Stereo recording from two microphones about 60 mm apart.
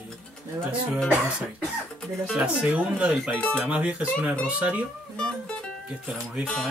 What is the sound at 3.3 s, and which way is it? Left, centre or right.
Music, centre.